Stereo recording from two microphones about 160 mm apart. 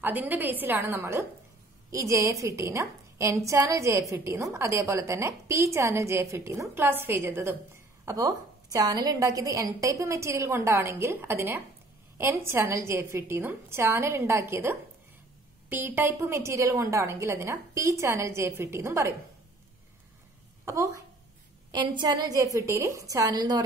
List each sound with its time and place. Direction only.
0.0 s a woman's voice: 10° right (ahead or behind)
20.6 s a woman's voice: 20° right (ahead or behind)